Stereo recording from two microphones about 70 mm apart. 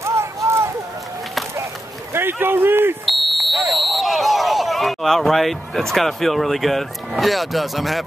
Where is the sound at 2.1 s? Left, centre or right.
Right.